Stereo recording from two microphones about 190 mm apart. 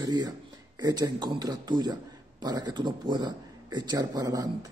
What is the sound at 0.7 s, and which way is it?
Speech, 20° right (ahead or behind).